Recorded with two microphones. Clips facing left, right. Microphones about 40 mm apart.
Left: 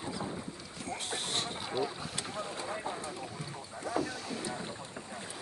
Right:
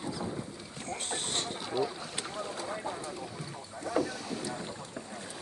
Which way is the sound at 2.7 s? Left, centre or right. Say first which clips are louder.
Right 1 dB; centre.